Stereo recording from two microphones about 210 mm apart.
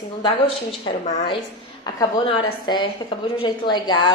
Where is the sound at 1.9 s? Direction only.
20° left (ahead or behind).